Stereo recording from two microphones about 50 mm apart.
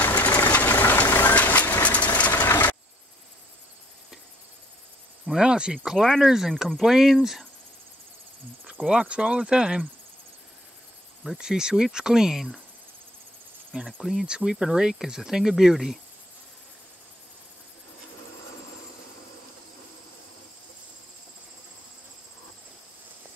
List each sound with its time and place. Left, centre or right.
0.0 s vehicle: left
2.4 s a sound: left
5.3 s speech: centre
5.9 s speech: centre
6.2 s speech: centre
9.0 s speech: centre
11.3 s speech: centre
13.7 s speech: centre